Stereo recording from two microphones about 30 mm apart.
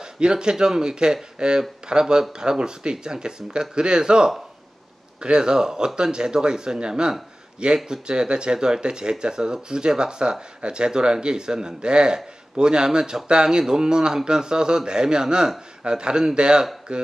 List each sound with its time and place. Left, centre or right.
0.2 s speech: right